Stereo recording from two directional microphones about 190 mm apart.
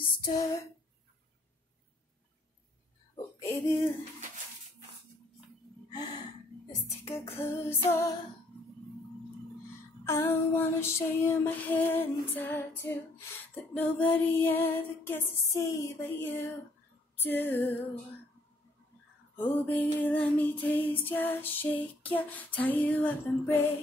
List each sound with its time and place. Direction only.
0.2 s a sound: 20° left (ahead or behind)
3.3 s a sound: 15° left (ahead or behind)
5.9 s gasp: 20° left (ahead or behind)
7.1 s female singing: 15° left (ahead or behind)
10.0 s female singing: 10° left (ahead or behind)
19.3 s female singing: 10° left (ahead or behind)